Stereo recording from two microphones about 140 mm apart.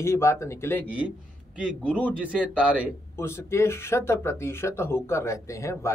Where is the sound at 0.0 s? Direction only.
20° left (ahead or behind).